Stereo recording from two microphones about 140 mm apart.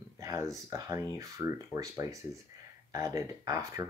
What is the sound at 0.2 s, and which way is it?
Speech, 25° right (ahead or behind).